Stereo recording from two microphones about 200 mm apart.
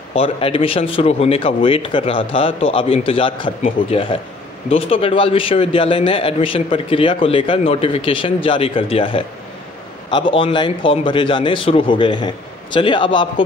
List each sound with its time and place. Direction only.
0.1 s a man's voice: 30° left (ahead or behind)